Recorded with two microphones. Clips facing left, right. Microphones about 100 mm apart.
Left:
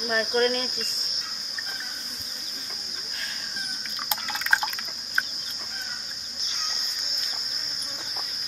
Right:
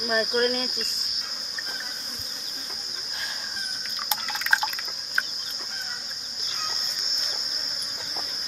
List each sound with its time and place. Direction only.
0.1 s cricket: 15° right (ahead or behind)
4.1 s drip: centre (ahead or behind)